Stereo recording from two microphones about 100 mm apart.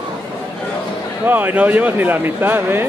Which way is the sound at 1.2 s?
20° right (ahead or behind).